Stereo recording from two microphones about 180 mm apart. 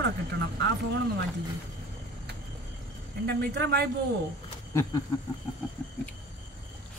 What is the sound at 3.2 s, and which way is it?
Speech, 60° right (ahead or behind).